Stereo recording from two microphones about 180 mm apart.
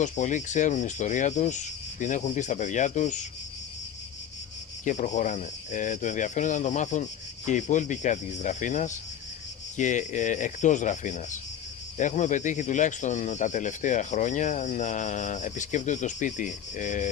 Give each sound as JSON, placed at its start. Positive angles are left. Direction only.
{"t": 0.0, "sound": "speech", "side_deg": 45}
{"t": 4.8, "sound": "speech", "side_deg": 45}